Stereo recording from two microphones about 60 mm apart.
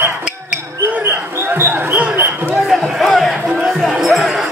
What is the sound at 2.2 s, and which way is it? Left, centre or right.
Basketball bounce, right.